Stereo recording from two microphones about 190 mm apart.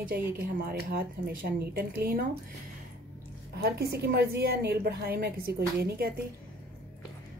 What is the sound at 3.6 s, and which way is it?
A woman's voice, 55° right (ahead or behind).